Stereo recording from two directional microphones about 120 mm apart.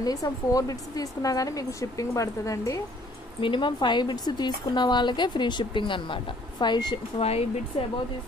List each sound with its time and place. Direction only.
0.0 s speech: 30° left (ahead or behind)
3.3 s speech: 45° left (ahead or behind)
7.2 s speech: 60° left (ahead or behind)